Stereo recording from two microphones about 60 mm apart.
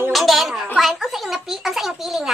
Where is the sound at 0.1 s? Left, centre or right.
Centre.